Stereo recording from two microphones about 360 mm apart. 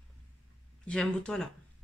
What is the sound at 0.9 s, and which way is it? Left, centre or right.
Speech, centre.